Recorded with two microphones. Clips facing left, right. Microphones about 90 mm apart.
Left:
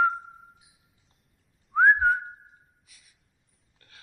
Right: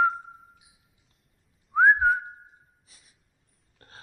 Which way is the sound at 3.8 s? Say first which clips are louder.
Right 6 dB; 35° right (ahead or behind).